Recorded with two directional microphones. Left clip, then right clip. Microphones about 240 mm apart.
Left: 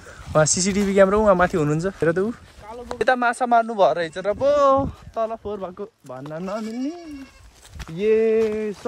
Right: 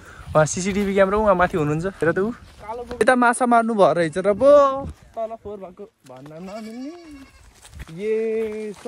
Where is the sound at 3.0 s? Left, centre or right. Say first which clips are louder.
Right 3 dB; centre.